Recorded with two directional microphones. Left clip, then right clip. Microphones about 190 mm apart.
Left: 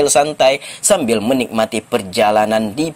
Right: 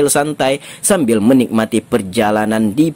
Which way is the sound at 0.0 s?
30° right (ahead or behind).